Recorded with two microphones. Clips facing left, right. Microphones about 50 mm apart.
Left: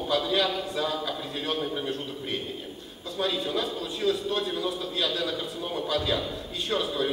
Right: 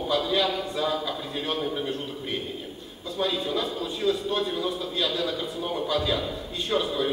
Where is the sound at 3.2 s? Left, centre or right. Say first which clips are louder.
Right 1 dB; centre.